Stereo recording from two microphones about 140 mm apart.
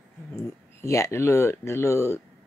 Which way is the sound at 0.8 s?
20° left (ahead or behind).